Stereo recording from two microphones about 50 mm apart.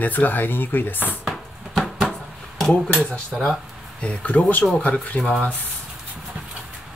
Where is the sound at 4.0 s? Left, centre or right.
Left.